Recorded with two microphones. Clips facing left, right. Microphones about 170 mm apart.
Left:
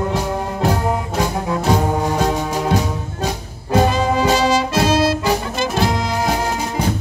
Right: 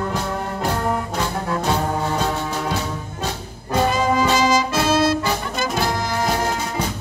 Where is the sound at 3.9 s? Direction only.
30° left (ahead or behind).